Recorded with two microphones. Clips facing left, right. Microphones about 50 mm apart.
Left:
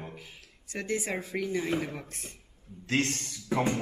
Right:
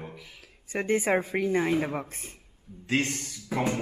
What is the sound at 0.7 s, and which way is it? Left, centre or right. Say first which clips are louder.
Speech: right 7 dB; right.